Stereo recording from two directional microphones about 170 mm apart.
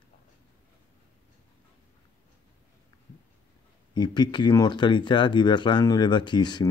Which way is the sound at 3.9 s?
25° left (ahead or behind).